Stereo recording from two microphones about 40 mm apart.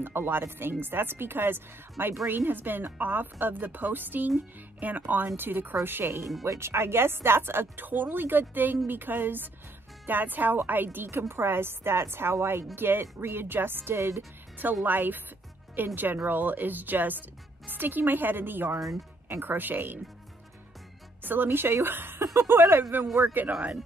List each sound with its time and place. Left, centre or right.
0.0 s a woman's voice: right
5.3 s a woman's voice: right
6.6 s a woman's voice: right
12.7 s speech: right
14.9 s a woman's voice: right
21.2 s speech: right
21.5 s speech: right
23.2 s speech: right